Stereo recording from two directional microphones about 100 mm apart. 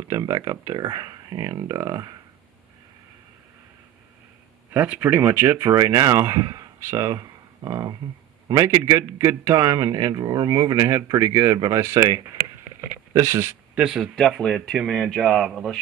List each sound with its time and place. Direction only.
0.1 s speech: 40° right (ahead or behind)
4.7 s speech: 15° right (ahead or behind)
13.7 s speech: 5° right (ahead or behind)